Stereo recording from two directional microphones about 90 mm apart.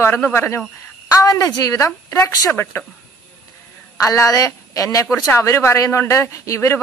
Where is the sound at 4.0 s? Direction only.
35° left (ahead or behind).